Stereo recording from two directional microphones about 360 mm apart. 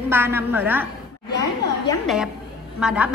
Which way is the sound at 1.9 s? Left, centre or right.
Centre.